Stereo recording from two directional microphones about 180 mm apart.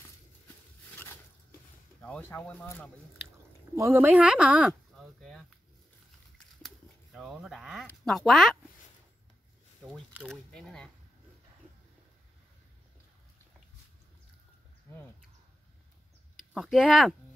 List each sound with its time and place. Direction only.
0.9 s a sound: 10° left (ahead or behind)
3.7 s speech: 15° right (ahead or behind); by 5.5 s 5° left (ahead or behind)
6.6 s speech: centre (ahead or behind)
10.2 s speech: 5° left (ahead or behind)
14.9 s a sound: 15° left (ahead or behind)
16.3 s speech: centre (ahead or behind)